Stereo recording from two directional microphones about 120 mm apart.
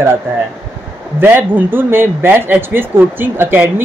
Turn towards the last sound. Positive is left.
turn(degrees=-15)  # may be behind; listen again after turning